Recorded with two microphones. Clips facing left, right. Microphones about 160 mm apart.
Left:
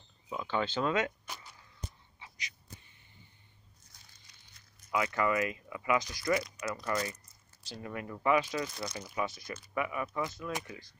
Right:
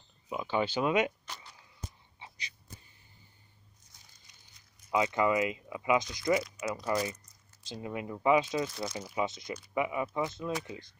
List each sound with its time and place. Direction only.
0.3 s speech: 15° right (ahead or behind)
2.1 s a sound: 30° right (ahead or behind)
3.9 s crumpling: 20° right (ahead or behind)
6.6 s speech: 20° right (ahead or behind)